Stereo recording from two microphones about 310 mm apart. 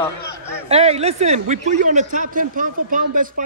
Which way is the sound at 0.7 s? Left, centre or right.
Centre.